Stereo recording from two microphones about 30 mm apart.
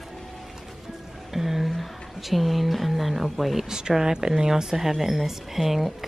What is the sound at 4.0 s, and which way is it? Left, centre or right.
Speech, right.